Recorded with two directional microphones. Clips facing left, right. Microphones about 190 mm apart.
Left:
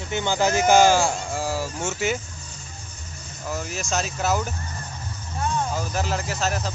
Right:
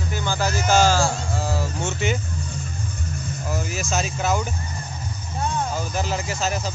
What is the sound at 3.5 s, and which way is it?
Speech, 5° right (ahead or behind).